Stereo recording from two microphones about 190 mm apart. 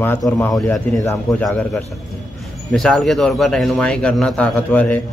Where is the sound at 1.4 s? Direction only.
Centre (ahead or behind).